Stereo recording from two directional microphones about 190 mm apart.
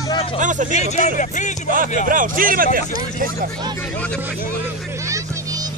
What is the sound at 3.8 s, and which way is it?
Speech, 5° left (ahead or behind).